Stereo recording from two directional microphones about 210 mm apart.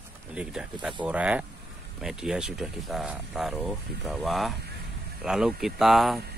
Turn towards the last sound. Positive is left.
turn(degrees=0)  # may be behind; listen again after turning